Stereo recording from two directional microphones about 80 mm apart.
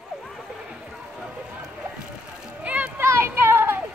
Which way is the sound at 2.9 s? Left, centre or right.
Right.